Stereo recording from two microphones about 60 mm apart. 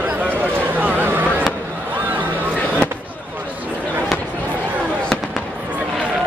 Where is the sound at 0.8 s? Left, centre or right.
Right.